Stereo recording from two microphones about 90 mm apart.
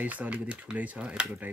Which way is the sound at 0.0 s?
15° right (ahead or behind).